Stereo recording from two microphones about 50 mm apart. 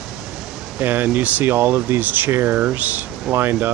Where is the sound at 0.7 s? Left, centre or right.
Right.